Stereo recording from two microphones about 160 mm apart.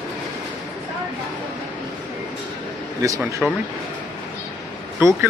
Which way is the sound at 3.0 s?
20° right (ahead or behind).